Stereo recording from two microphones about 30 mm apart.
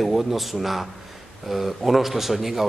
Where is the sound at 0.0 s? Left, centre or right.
Centre.